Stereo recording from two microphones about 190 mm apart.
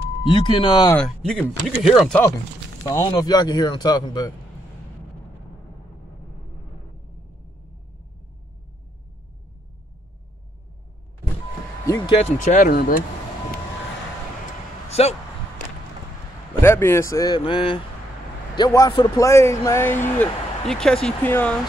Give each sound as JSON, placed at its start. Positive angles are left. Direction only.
{"t": 0.3, "sound": "speech", "side_deg": 25}
{"t": 0.8, "sound": "speech", "side_deg": 5}
{"t": 2.8, "sound": "speech", "side_deg": 20}
{"t": 11.8, "sound": "speech", "side_deg": 15}
{"t": 12.2, "sound": "speech", "side_deg": 40}
{"t": 14.9, "sound": "a sound", "side_deg": 35}
{"t": 16.6, "sound": "speech", "side_deg": 15}